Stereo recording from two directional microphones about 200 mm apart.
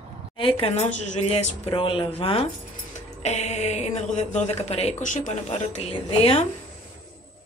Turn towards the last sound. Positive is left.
turn(degrees=30)  # may be behind; listen again after turning